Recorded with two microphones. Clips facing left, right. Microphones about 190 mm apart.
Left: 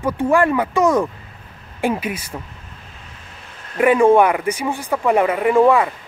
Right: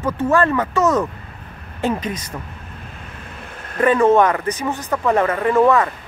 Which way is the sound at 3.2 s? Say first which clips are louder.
Right 6 dB; 55° right (ahead or behind).